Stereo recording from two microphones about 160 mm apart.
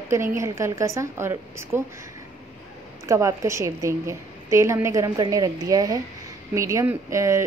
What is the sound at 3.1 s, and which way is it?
A woman's voice, 20° right (ahead or behind).